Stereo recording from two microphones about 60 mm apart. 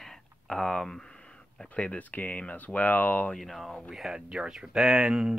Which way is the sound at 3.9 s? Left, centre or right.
Centre.